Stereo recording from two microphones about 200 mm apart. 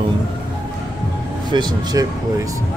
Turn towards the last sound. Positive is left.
turn(degrees=-20)  # may be behind; listen again after turning